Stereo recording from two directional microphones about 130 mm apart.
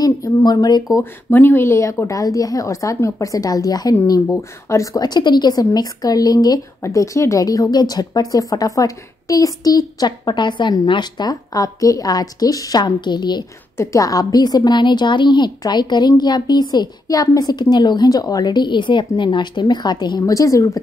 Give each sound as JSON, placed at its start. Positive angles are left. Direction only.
{"t": 0.0, "sound": "speech", "side_deg": 30}
{"t": 1.3, "sound": "a woman's voice", "side_deg": 15}